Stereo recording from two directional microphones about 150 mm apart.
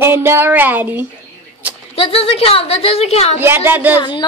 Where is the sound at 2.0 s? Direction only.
40° left (ahead or behind).